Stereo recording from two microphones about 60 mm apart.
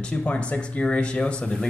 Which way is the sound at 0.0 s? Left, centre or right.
Left.